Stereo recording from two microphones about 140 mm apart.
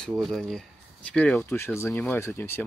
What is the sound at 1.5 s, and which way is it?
Speech, 15° left (ahead or behind).